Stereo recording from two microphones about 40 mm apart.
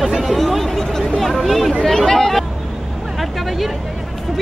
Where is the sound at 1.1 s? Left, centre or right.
Centre.